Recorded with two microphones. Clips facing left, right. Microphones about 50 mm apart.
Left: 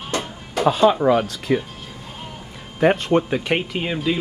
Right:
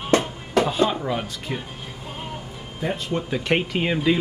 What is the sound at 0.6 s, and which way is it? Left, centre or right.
Speech, left.